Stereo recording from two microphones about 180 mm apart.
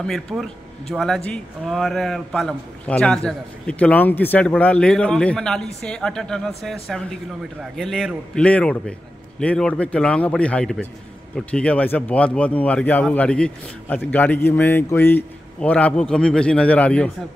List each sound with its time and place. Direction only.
0.0 s speech: centre (ahead or behind)